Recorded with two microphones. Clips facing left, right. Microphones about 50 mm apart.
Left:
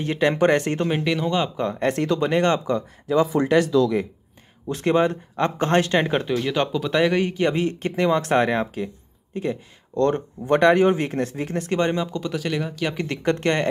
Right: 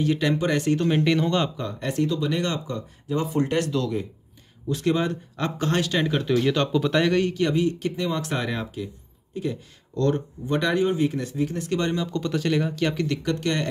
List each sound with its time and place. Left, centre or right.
0.0 s speech: left
0.8 s speech: centre
1.6 s speech: left
2.3 s speech: left
2.6 s speech: left
4.6 s speech: left
6.2 s speech: centre
7.5 s speech: left
10.9 s speech: left
11.7 s speech: left
12.1 s speech: centre
12.9 s speech: left